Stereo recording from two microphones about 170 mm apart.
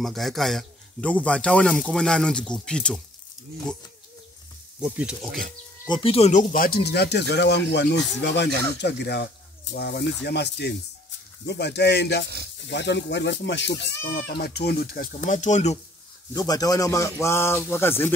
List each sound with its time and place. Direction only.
0.0 s speech: centre (ahead or behind)
4.7 s speech: 5° right (ahead or behind)
5.9 s speech: 30° left (ahead or behind); by 13.7 s 90° left
14.0 s speech: 65° left (ahead or behind); by 15.8 s 40° left (ahead or behind)
16.3 s speech: 20° left (ahead or behind)